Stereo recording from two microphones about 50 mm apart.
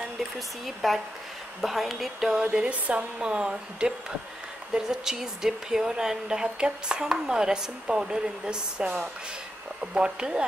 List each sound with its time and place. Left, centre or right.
0.8 s speech: centre
2.4 s speech: right